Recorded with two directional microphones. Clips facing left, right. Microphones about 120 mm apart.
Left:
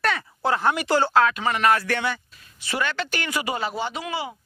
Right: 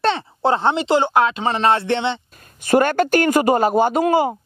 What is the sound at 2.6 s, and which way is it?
Speech, 50° right (ahead or behind).